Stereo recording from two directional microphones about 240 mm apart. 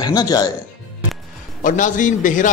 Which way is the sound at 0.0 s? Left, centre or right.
Centre.